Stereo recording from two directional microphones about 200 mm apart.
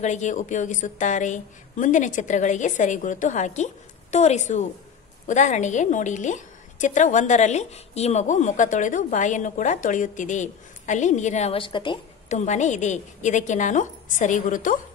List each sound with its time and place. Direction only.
0.0 s a woman's voice: 35° left (ahead or behind)
12.3 s a woman's voice: 35° left (ahead or behind)